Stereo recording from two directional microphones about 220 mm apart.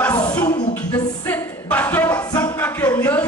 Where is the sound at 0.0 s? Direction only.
15° left (ahead or behind).